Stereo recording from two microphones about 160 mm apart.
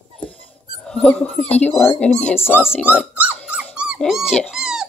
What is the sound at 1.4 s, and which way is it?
Speech, 40° left (ahead or behind).